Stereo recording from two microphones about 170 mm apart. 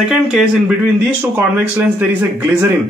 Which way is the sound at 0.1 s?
5° right (ahead or behind).